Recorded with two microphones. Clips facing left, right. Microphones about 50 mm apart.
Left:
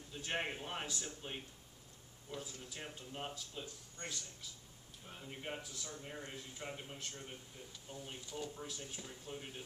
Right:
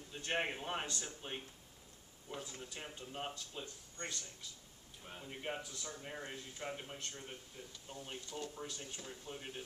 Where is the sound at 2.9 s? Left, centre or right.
Centre.